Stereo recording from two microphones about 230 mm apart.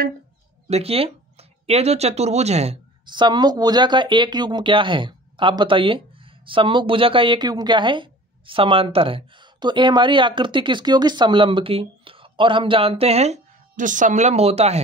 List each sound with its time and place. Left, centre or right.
0.7 s a woman's voice: right